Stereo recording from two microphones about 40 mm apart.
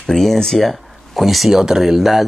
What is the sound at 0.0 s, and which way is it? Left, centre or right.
Speech, centre.